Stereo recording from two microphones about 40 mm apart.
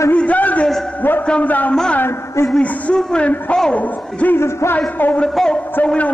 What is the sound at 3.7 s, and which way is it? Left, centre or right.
Speech, left.